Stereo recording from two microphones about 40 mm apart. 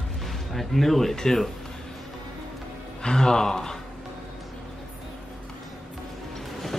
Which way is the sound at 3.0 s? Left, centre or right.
Centre.